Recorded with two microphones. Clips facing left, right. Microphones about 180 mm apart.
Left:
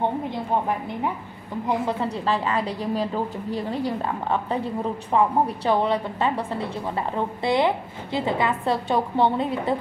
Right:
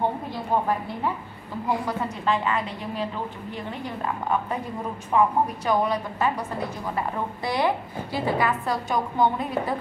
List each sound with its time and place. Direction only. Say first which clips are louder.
1.9 s a woman's voice: left 2 dB; 35° left (ahead or behind)